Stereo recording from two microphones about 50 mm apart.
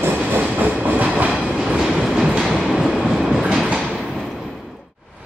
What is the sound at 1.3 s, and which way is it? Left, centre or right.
Train, centre.